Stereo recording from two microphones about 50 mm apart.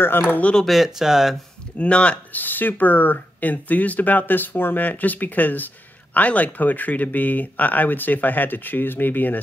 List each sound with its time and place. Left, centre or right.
0.2 s speech: left
0.7 s speech: centre
1.8 s speech: left
2.3 s speech: left